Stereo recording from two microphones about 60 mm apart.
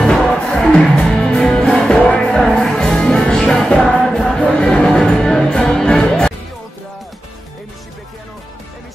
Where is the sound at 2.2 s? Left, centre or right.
Centre.